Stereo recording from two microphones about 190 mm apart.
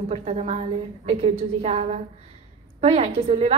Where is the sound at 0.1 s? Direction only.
35° right (ahead or behind).